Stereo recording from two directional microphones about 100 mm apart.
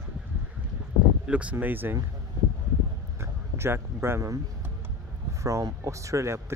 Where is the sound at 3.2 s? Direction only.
25° right (ahead or behind).